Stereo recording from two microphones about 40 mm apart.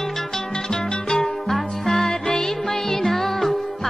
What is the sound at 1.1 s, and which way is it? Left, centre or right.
Music, centre.